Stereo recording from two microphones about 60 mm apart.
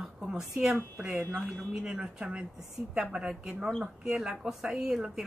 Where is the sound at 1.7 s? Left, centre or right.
Centre.